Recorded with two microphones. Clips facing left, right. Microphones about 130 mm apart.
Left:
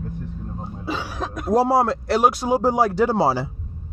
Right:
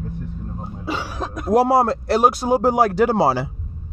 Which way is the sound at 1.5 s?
65° right (ahead or behind).